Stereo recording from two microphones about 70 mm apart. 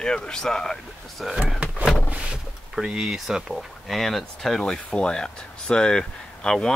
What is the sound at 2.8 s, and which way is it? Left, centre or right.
Speech, centre.